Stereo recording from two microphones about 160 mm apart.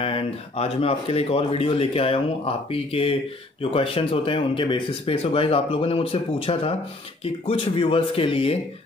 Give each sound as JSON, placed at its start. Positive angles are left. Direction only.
{"t": 0.0, "sound": "speech", "side_deg": 35}